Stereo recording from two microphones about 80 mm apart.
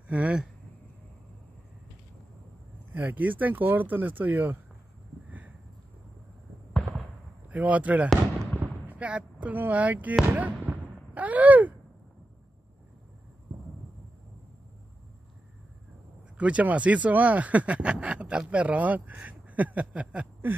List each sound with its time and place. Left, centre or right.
0.1 s speech: centre
2.9 s speech: right
7.4 s speech: centre
10.3 s artillery fire: centre
16.3 s speech: centre
19.2 s a sound: centre